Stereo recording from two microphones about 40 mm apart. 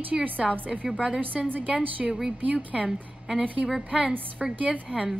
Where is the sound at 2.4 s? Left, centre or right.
Right.